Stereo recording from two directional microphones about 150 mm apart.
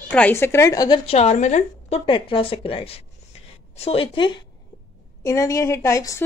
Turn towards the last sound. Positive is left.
turn(degrees=20)  # may be behind; listen again after turning